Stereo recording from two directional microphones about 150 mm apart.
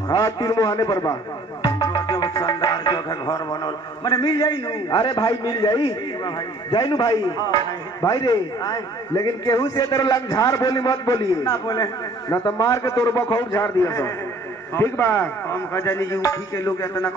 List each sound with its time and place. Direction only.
0.1 s music: 25° left (ahead or behind)
14.7 s a man's voice: 15° left (ahead or behind)